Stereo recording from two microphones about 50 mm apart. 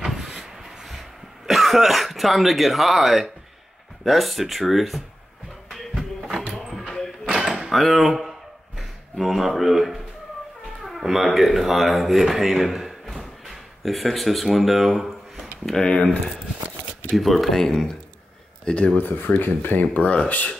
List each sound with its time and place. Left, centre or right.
0.0 s cough: centre
4.0 s speech: centre
5.7 s music: centre
6.5 s a sound: centre
10.8 s speech: centre
15.6 s speech: centre
15.9 s speech: left
17.1 s speech: centre
18.9 s speech: left